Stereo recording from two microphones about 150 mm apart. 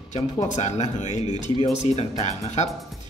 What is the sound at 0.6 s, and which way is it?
A man's voice, 50° left (ahead or behind).